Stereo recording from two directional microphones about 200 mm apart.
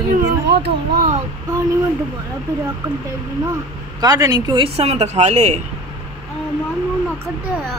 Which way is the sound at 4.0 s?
20° right (ahead or behind).